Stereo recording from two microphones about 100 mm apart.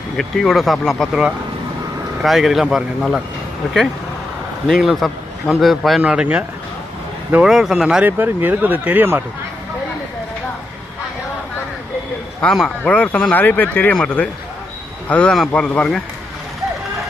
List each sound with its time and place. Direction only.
0.2 s a man's voice: 5° left (ahead or behind)
2.2 s a man's voice: centre (ahead or behind)
4.6 s a man's voice: centre (ahead or behind)
8.0 s speech: 20° right (ahead or behind)
12.4 s a man's voice: 5° left (ahead or behind)